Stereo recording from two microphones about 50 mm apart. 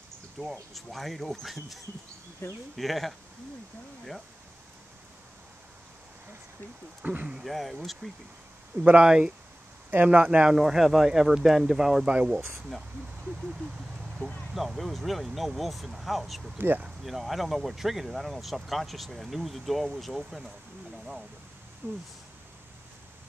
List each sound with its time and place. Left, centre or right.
0.4 s speech: centre
7.0 s speech: right
7.4 s speech: centre
9.0 s speech: centre
10.0 s speech: right
10.5 s speech: centre
12.1 s speech: right
12.4 s speech: right
13.2 s a sound: centre
14.5 s speech: centre
16.5 s speech: right
17.0 s speech: centre
21.8 s speech: right